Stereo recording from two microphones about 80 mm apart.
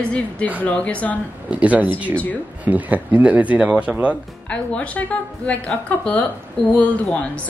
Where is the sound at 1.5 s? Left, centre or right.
Centre.